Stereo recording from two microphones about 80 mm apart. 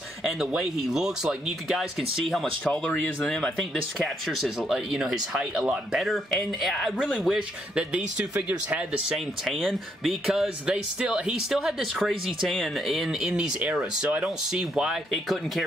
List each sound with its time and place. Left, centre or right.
0.2 s speech: centre
2.6 s speech: centre
9.1 s speech: centre
13.3 s speech: centre